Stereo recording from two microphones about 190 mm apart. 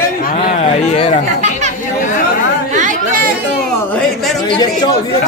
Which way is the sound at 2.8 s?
45° right (ahead or behind).